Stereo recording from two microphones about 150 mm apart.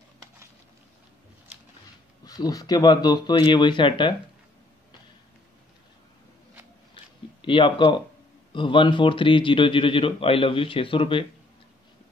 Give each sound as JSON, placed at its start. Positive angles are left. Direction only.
{"t": 2.2, "sound": "speech", "side_deg": 25}
{"t": 7.4, "sound": "speech", "side_deg": 35}